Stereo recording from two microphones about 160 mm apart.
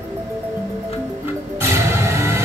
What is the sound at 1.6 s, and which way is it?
Music, 15° right (ahead or behind).